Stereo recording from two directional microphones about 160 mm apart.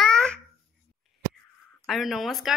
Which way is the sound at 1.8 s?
Centre (ahead or behind).